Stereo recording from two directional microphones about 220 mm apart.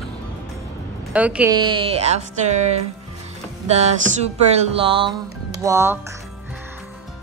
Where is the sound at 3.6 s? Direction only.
30° right (ahead or behind).